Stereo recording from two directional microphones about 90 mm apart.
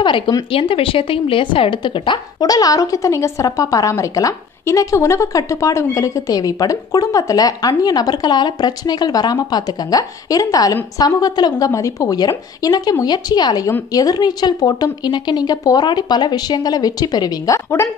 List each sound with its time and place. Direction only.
0.5 s a woman's voice: 90° left; by 2.1 s 65° left (ahead or behind)
2.4 s speech: 45° left (ahead or behind)
11.5 s a woman's voice: 35° left (ahead or behind)